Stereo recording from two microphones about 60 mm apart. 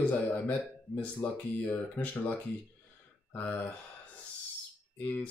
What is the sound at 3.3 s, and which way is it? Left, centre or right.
Speech, left.